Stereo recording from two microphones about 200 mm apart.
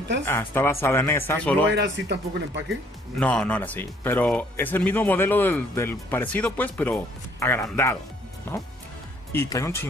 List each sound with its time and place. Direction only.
0.2 s speech: 10° left (ahead or behind)
1.8 s speech: 55° right (ahead or behind)
3.2 s speech: 5° left (ahead or behind)